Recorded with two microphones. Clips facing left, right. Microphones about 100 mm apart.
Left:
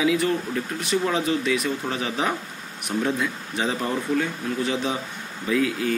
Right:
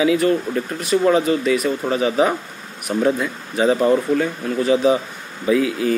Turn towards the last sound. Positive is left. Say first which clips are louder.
# right 5 dB
turn(degrees=-5)  # may be behind; listen again after turning